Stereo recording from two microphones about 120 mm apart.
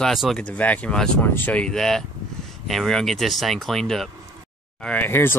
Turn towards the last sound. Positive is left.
turn(degrees=20)  # may be behind; listen again after turning